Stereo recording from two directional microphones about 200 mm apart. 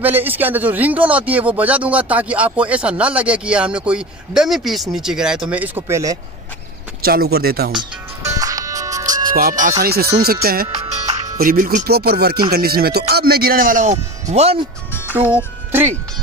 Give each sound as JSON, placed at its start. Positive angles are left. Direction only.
{"t": 0.0, "sound": "speech", "side_deg": -10}
{"t": 7.0, "sound": "speech", "side_deg": -50}
{"t": 7.7, "sound": "music", "side_deg": -15}
{"t": 9.3, "sound": "speech", "side_deg": -45}
{"t": 14.9, "sound": "music", "side_deg": 10}
{"t": 15.1, "sound": "speech", "side_deg": -10}